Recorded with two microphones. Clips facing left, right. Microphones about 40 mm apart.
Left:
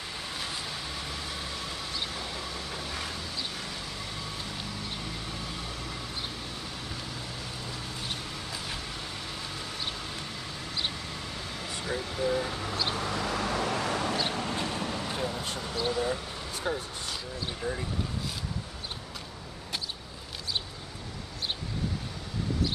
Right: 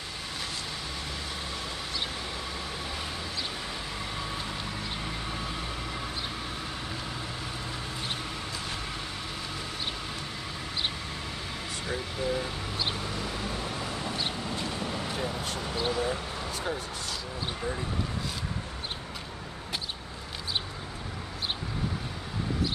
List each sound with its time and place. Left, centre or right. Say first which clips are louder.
5.0 s vehicle: right 3 dB; centre
11.8 s vehicle: left 2 dB; centre
13.1 s vehicle: left 4 dB; left
14.5 s vehicle: left 2 dB; left
14.8 s vehicle: even; centre
15.0 s vehicle: even; centre
15.6 s a sound: even; centre
16.7 s speech: left 3 dB; centre